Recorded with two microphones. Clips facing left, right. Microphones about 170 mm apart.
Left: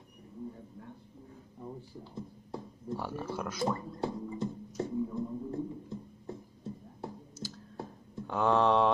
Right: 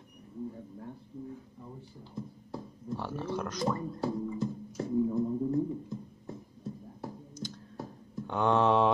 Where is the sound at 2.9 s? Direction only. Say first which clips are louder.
Right 2 dB; 10° left (ahead or behind).